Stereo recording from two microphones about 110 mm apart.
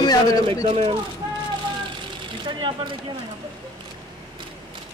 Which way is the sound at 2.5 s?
50° right (ahead or behind).